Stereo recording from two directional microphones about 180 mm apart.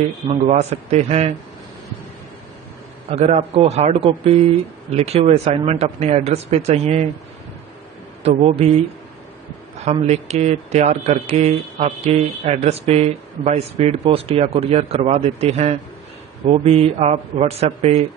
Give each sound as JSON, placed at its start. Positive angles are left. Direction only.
{"t": 0.5, "sound": "speech", "side_deg": -35}
{"t": 3.1, "sound": "speech", "side_deg": -35}
{"t": 8.2, "sound": "speech", "side_deg": -35}
{"t": 9.8, "sound": "speech", "side_deg": -35}